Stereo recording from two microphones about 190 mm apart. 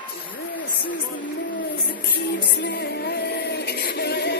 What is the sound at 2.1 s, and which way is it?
Music, 65° left (ahead or behind).